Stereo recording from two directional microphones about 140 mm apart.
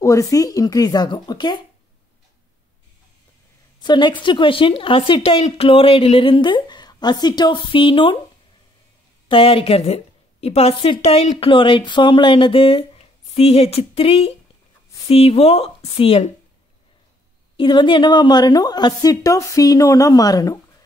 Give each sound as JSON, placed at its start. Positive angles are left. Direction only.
{"t": 0.0, "sound": "a woman's voice", "side_deg": 25}
{"t": 3.8, "sound": "a woman's voice", "side_deg": 35}
{"t": 9.3, "sound": "a woman's voice", "side_deg": 40}
{"t": 17.6, "sound": "a woman's voice", "side_deg": 35}